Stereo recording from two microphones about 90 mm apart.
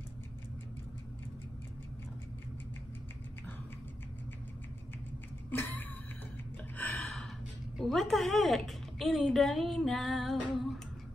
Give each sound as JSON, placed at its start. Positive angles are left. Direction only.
{"t": 5.5, "sound": "a sound", "side_deg": 20}
{"t": 6.8, "sound": "gasp", "side_deg": 20}
{"t": 7.7, "sound": "a woman's voice", "side_deg": 5}